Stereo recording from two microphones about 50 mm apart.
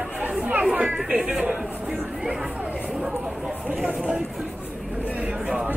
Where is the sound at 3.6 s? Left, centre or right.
Right.